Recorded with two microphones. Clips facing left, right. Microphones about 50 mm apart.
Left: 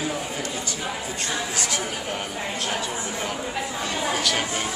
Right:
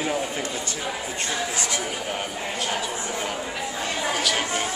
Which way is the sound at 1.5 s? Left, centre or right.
Right.